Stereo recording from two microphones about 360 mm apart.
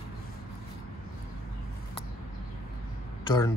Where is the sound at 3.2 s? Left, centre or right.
Centre.